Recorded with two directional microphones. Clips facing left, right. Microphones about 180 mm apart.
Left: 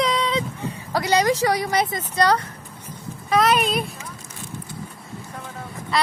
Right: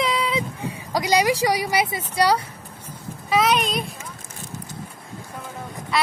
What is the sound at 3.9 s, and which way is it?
Vehicle, 50° right (ahead or behind).